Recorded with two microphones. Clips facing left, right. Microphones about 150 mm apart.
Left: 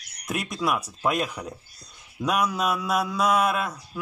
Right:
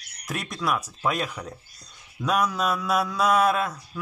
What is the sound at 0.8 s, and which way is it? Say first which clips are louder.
Speech: left 1 dB; 5° left (ahead or behind).